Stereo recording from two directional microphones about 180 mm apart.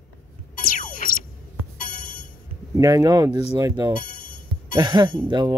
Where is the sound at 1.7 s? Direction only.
50° left (ahead or behind).